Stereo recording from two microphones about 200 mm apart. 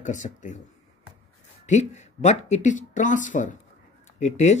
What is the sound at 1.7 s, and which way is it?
Speech, 35° left (ahead or behind).